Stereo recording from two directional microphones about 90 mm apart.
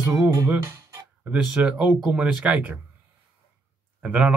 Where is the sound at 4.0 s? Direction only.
10° right (ahead or behind).